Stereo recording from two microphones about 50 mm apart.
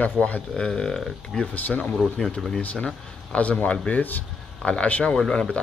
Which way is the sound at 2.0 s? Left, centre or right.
Centre.